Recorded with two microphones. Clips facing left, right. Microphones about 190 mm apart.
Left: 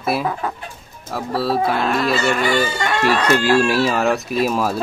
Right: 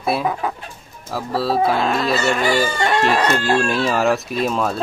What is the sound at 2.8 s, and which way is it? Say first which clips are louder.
Speech: right 1 dB; 30° right (ahead or behind).